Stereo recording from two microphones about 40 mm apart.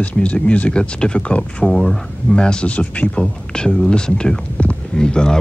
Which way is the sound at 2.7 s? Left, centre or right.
Left.